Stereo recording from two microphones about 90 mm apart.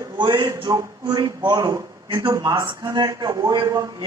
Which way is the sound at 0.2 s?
55° right (ahead or behind).